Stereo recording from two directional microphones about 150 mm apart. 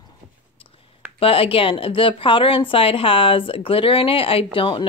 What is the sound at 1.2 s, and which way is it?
A woman's voice, 40° left (ahead or behind).